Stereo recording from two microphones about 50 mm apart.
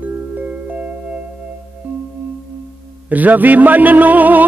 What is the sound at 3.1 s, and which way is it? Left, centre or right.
A man's voice, right.